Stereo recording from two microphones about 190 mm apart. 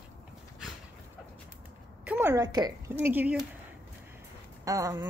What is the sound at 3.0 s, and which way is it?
Humming, 10° right (ahead or behind).